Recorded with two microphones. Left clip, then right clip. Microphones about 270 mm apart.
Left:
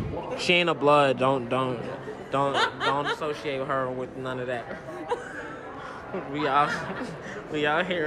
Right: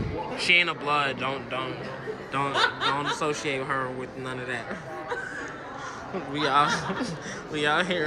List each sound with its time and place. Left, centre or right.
0.4 s a man's voice: centre
2.5 s speech: left
3.2 s speech: centre
6.1 s speech: centre